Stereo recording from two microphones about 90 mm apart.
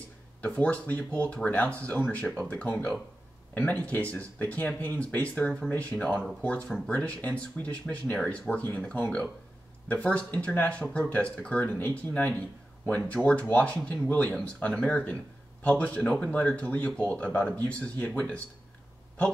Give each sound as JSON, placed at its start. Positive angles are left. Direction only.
{"t": 0.4, "sound": "speech", "side_deg": 15}